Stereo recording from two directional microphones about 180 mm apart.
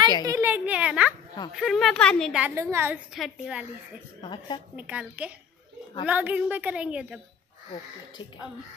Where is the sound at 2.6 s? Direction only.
15° right (ahead or behind).